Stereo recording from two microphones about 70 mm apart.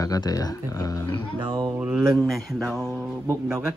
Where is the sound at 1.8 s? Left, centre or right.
Centre.